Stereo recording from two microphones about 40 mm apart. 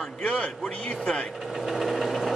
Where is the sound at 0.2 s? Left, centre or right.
Left.